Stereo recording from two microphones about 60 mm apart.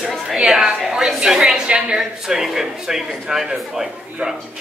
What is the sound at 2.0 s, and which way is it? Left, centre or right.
A man's voice, centre.